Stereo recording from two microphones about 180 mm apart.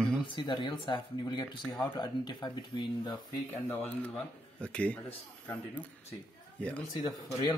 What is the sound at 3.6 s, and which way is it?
A man's voice, 10° left (ahead or behind).